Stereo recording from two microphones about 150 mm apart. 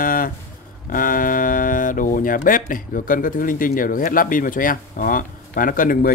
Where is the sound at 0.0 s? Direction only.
70° left (ahead or behind).